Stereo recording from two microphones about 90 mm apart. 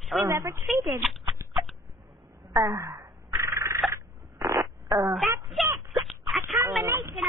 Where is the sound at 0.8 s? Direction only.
35° right (ahead or behind).